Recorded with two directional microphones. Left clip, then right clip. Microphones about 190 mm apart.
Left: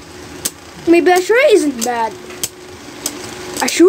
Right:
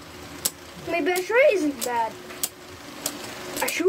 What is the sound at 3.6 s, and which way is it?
Speech, 55° left (ahead or behind).